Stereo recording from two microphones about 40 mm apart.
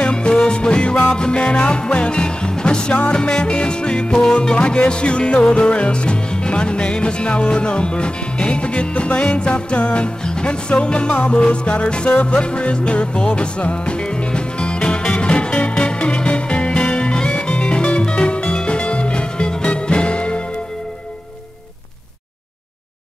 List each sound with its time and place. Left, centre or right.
0.0 s music: left